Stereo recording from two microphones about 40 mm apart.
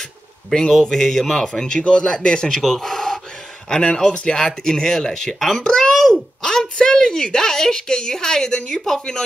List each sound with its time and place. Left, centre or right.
0.5 s a woman's voice: centre
2.5 s a woman's voice: centre